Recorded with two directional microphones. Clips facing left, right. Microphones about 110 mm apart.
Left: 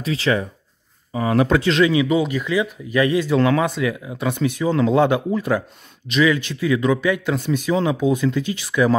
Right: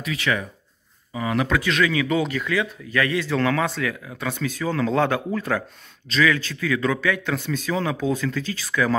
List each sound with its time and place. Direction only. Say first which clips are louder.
0.0 s speech: left 5 dB; 30° left (ahead or behind)
2.0 s speech: left 3 dB; 10° left (ahead or behind)